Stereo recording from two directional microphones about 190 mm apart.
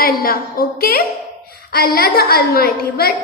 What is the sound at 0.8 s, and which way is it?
A woman's voice, 55° left (ahead or behind).